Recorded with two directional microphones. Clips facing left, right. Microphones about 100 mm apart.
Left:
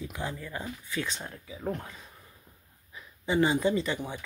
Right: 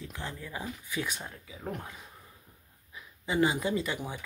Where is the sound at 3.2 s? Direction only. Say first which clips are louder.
Left 3 dB; 5° right (ahead or behind).